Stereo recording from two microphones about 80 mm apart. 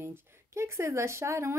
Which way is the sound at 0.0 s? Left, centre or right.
Right.